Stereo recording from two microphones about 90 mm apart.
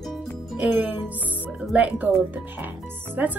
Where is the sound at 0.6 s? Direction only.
20° right (ahead or behind).